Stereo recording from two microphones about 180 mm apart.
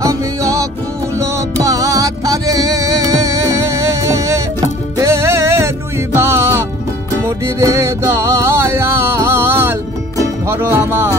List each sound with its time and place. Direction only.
0.0 s music: 20° right (ahead or behind)